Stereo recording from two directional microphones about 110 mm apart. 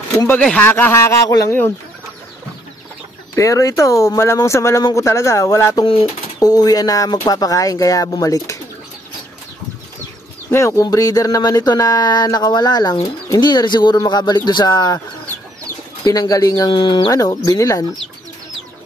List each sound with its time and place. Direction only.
0.3 s speech: 15° left (ahead or behind)
3.3 s speech: 30° left (ahead or behind)
10.5 s speech: 25° left (ahead or behind)
16.0 s speech: 35° left (ahead or behind)
17.1 s speech: 30° left (ahead or behind)